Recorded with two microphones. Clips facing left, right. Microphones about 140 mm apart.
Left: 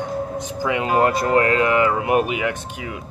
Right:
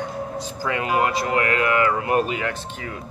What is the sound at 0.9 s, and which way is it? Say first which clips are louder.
Speech: left 4 dB; 45° left (ahead or behind).